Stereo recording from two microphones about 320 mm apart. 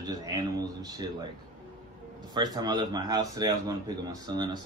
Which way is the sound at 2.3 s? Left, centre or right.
Centre.